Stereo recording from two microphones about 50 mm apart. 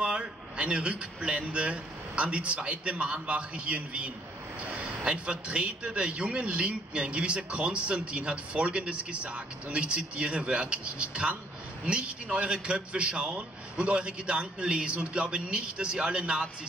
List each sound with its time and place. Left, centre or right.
0.6 s a man's voice: right